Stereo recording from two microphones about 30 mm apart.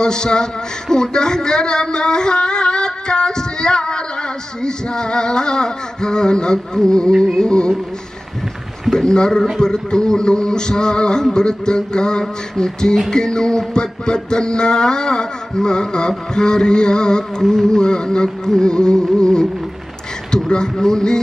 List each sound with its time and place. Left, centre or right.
0.0 s speech: left
8.9 s speech: left
17.4 s speech: centre
20.4 s speech: left